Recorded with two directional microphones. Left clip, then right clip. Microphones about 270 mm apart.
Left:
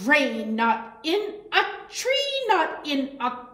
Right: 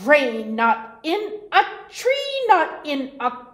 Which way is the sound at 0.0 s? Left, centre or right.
Right.